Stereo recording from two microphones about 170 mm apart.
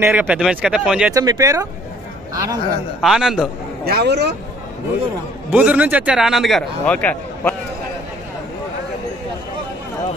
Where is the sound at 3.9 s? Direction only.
75° right (ahead or behind).